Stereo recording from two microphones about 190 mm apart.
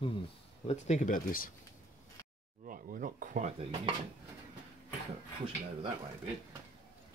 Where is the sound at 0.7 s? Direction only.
40° left (ahead or behind).